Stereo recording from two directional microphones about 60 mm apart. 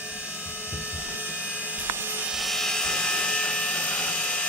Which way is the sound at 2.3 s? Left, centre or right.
Centre.